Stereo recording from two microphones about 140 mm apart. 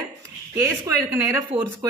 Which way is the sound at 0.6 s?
20° right (ahead or behind).